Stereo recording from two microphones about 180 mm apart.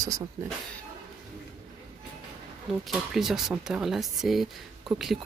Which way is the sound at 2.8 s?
Centre (ahead or behind).